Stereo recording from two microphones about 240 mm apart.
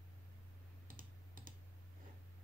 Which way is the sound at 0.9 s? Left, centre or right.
Right.